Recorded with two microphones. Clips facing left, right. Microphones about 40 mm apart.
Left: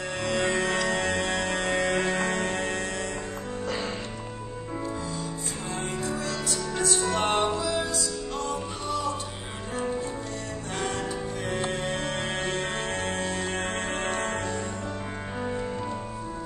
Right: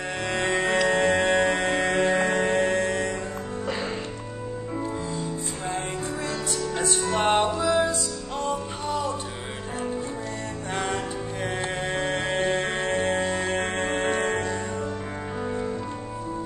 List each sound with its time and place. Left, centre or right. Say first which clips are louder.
0.3 s music: right 2 dB; right
3.6 s music: right 1 dB; centre
6.7 s music: even; right
10.7 s music: right 2 dB; right
15.4 s music: right 2 dB; centre